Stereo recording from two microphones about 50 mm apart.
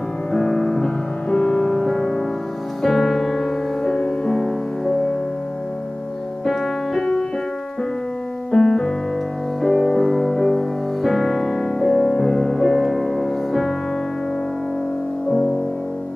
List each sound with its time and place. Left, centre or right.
0.3 s music: centre
6.4 s music: centre
7.0 s music: centre
8.5 s keyboard: centre
9.6 s music: centre
15.2 s music: centre